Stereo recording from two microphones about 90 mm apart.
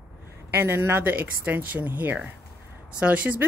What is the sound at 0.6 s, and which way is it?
A woman's voice, 25° right (ahead or behind).